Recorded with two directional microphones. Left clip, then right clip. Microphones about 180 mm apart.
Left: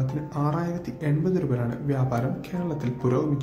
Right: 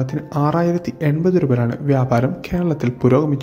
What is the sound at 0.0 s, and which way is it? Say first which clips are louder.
Speech: right 8 dB; 45° right (ahead or behind).